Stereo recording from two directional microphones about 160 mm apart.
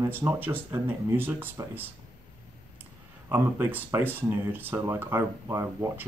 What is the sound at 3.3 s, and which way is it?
Speech, 15° right (ahead or behind).